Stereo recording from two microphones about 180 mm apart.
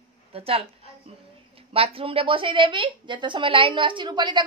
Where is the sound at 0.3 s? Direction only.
30° right (ahead or behind).